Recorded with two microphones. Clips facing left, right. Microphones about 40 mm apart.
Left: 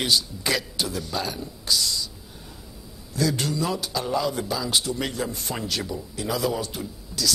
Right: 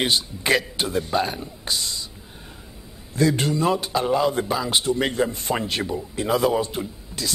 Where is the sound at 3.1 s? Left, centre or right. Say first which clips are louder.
Right 4 dB; right.